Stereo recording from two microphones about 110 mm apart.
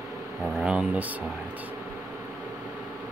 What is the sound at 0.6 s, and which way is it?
Speech, 10° right (ahead or behind).